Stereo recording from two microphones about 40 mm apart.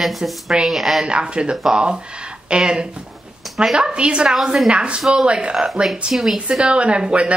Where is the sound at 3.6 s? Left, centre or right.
Centre.